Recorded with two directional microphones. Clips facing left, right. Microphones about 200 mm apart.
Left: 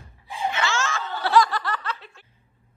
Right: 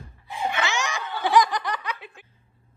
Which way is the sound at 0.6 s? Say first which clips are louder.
Left 1 dB; 15° right (ahead or behind).